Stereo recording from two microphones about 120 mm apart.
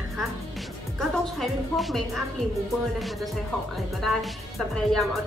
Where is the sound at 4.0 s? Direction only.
Centre (ahead or behind).